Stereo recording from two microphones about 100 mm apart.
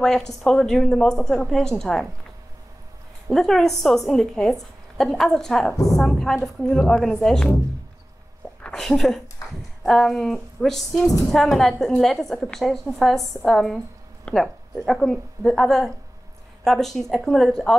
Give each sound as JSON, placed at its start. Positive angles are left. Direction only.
{"t": 0.0, "sound": "a woman's voice", "side_deg": 5}
{"t": 3.3, "sound": "a woman's voice", "side_deg": 5}
{"t": 8.6, "sound": "a sound", "side_deg": 5}
{"t": 9.8, "sound": "a woman's voice", "side_deg": 5}